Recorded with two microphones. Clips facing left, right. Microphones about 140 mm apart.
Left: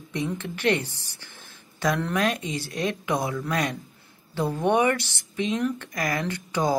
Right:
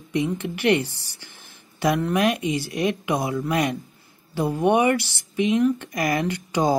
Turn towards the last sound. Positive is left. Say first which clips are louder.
# right 3 dB
turn(degrees=-15)  # may be behind; listen again after turning